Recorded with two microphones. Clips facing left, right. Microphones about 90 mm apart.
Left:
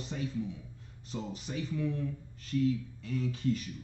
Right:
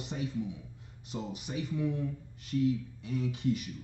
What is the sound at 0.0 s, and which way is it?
A man's voice, 15° right (ahead or behind).